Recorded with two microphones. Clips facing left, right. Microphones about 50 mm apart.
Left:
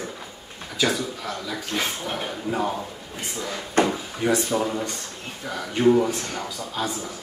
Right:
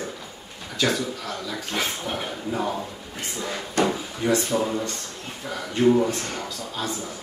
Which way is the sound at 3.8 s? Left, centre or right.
Left.